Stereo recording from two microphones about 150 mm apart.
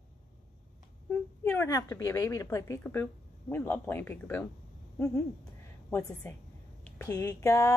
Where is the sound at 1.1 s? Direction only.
15° left (ahead or behind).